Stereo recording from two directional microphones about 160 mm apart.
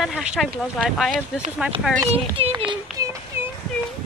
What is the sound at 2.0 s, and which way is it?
Speech, 40° right (ahead or behind).